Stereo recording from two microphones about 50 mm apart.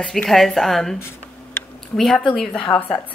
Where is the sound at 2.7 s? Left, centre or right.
Left.